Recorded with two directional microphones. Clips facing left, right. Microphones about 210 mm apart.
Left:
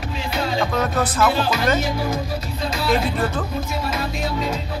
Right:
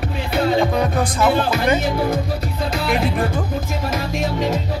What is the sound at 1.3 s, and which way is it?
Music, 55° right (ahead or behind).